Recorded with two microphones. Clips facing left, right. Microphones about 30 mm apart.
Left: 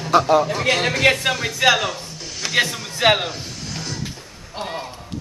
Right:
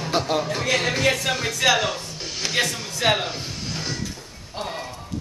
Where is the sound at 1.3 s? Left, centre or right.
Centre.